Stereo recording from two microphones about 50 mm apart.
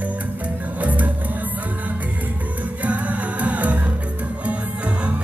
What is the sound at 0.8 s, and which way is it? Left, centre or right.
Music, right.